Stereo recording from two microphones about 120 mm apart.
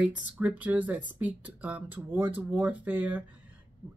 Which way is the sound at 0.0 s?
10° right (ahead or behind).